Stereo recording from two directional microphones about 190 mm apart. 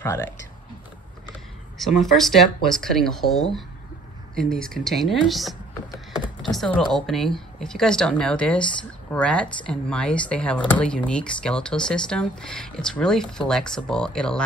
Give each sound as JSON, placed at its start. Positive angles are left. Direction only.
{"t": 1.8, "sound": "speech", "side_deg": 0}
{"t": 4.5, "sound": "speech", "side_deg": 5}